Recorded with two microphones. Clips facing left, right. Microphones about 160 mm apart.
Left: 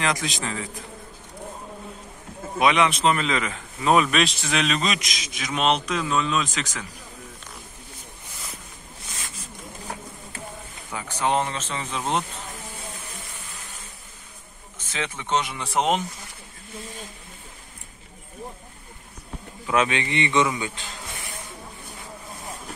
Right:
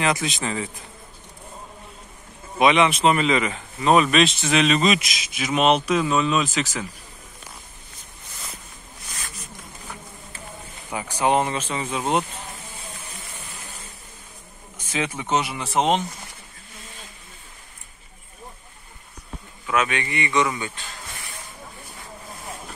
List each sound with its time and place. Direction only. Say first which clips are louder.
0.0 s speech: right 3 dB; 5° right (ahead or behind)
2.6 s speech: right 3 dB; centre (ahead or behind)
10.9 s speech: right 3 dB; 10° right (ahead or behind)
14.8 s speech: right 4 dB; 10° right (ahead or behind)
19.6 s a man's voice: left 1 dB; 25° left (ahead or behind)